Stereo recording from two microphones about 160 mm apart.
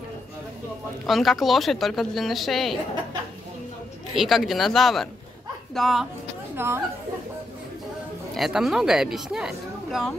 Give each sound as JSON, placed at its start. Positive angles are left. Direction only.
{"t": 1.0, "sound": "a woman's voice", "side_deg": 0}
{"t": 4.1, "sound": "a woman's voice", "side_deg": 0}
{"t": 6.5, "sound": "a woman's voice", "side_deg": -15}
{"t": 8.4, "sound": "a woman's voice", "side_deg": 0}